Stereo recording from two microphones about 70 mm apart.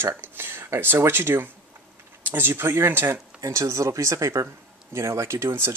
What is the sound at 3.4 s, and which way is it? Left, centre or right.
Speech, right.